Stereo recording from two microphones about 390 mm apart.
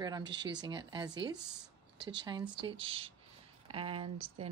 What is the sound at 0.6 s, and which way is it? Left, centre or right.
Speech, centre.